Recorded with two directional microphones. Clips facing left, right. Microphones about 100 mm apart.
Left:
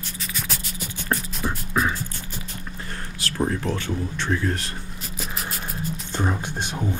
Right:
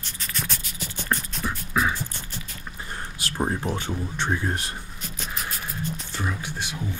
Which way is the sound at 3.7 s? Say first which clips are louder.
Left 2 dB; 15° right (ahead or behind).